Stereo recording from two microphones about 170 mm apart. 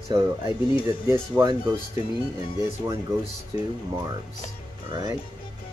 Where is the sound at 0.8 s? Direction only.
20° right (ahead or behind).